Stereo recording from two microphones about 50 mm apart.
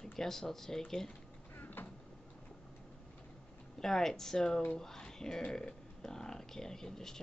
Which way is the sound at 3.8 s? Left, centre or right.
Centre.